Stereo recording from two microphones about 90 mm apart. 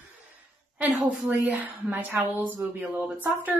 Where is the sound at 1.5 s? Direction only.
15° right (ahead or behind).